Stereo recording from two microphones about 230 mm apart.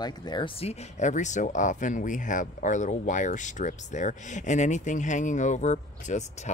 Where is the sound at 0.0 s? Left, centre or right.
Centre.